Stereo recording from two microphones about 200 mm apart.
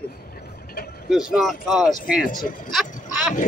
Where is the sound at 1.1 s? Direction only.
Centre (ahead or behind).